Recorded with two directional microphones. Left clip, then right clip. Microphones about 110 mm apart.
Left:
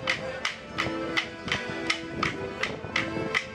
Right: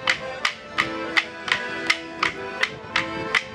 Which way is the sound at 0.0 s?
35° right (ahead or behind).